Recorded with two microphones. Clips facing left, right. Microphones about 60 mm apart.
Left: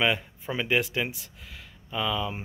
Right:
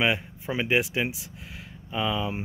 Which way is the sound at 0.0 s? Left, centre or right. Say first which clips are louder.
Right 1 dB; centre.